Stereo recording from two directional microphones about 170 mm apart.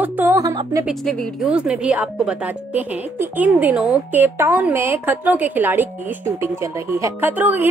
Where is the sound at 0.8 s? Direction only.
Centre (ahead or behind).